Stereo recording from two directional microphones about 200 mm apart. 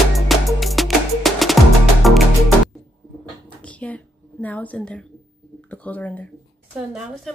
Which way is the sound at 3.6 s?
5° left (ahead or behind).